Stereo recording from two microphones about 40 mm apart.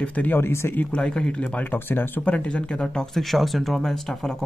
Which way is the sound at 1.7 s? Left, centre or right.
Left.